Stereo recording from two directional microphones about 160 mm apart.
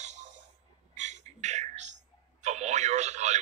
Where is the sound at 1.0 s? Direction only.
45° right (ahead or behind).